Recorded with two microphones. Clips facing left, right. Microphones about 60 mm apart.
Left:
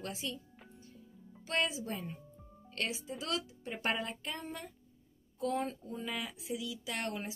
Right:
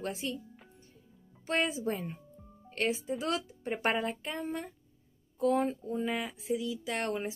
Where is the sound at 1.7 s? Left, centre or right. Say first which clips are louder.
Right 6 dB; right.